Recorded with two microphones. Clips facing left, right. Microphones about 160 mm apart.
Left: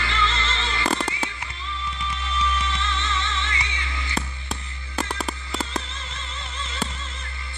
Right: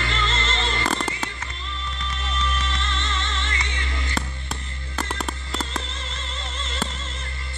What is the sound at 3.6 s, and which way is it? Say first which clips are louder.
Music: right 2 dB; 50° right (ahead or behind).